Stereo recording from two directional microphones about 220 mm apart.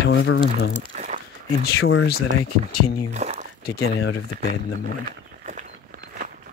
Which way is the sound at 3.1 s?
30° right (ahead or behind).